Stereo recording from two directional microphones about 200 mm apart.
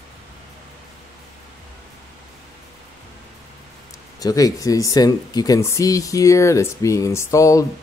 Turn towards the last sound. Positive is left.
turn(degrees=15)  # may be behind; listen again after turning